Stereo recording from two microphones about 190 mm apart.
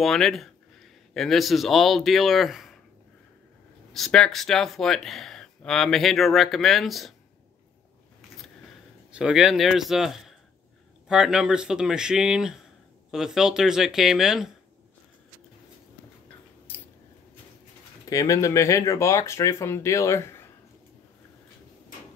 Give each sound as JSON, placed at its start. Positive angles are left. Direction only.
{"t": 0.0, "sound": "speech", "side_deg": 0}
{"t": 3.9, "sound": "speech", "side_deg": 0}
{"t": 9.1, "sound": "speech", "side_deg": -5}
{"t": 18.1, "sound": "speech", "side_deg": 15}